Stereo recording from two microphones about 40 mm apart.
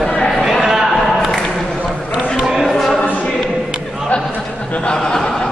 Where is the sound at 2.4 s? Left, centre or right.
Centre.